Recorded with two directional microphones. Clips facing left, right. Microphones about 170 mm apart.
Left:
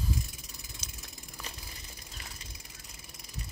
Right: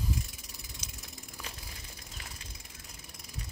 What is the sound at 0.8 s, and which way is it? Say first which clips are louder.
Ratchet: right 1 dB; 15° right (ahead or behind).